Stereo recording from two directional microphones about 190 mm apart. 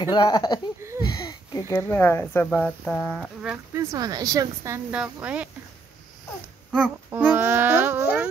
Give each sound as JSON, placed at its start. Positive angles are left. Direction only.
{"t": 0.0, "sound": "speech", "side_deg": 20}
{"t": 3.7, "sound": "speech", "side_deg": -20}
{"t": 7.1, "sound": "a child's voice", "side_deg": -10}